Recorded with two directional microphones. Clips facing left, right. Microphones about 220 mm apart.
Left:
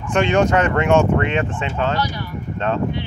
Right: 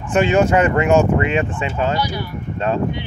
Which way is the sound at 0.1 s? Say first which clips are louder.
Right 2 dB; 5° right (ahead or behind).